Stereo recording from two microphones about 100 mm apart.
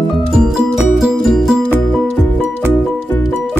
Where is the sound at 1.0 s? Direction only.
Centre (ahead or behind).